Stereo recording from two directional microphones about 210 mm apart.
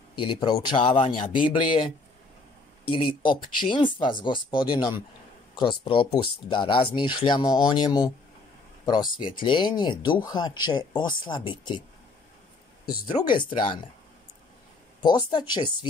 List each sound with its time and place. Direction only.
0.1 s speech: 25° left (ahead or behind)
2.9 s speech: 25° left (ahead or behind)
13.4 s speech: 25° left (ahead or behind)
15.0 s speech: 20° left (ahead or behind)